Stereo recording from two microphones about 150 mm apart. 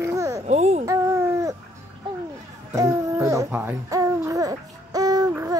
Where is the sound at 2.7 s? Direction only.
20° right (ahead or behind).